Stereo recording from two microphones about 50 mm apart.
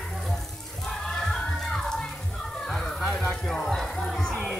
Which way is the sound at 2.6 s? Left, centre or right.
Centre.